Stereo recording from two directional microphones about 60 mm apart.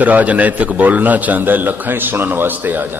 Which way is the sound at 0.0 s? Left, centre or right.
Right.